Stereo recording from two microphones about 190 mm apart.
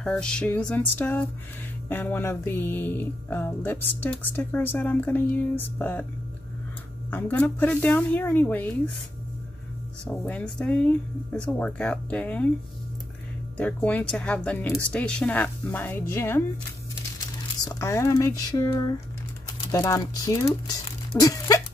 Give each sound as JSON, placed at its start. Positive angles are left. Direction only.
{"t": 0.0, "sound": "a sound", "side_deg": 5}
{"t": 1.9, "sound": "music", "side_deg": 10}
{"t": 7.1, "sound": "music", "side_deg": 10}
{"t": 10.0, "sound": "music", "side_deg": 5}
{"t": 13.6, "sound": "music", "side_deg": 5}
{"t": 17.6, "sound": "music", "side_deg": 15}
{"t": 21.2, "sound": "a sound", "side_deg": 20}